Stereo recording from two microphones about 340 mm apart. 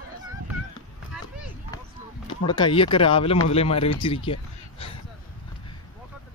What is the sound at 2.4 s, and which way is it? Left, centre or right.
Speech, centre.